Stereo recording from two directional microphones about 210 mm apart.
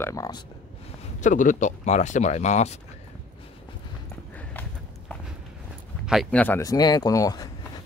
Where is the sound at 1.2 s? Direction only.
40° left (ahead or behind).